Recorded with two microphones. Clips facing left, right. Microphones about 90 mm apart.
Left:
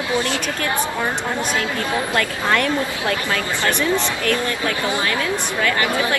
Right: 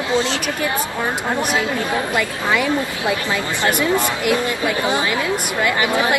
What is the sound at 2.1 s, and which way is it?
A woman's voice, 10° right (ahead or behind).